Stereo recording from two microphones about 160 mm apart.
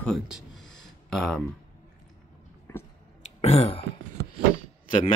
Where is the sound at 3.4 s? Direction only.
40° left (ahead or behind).